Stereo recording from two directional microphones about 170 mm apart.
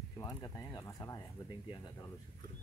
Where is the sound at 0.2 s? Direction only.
20° left (ahead or behind).